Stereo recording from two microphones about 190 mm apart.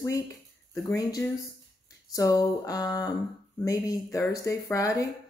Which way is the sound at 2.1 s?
20° left (ahead or behind).